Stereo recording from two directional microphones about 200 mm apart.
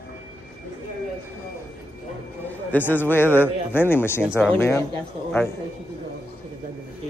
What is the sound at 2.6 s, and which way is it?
Speech, 10° left (ahead or behind).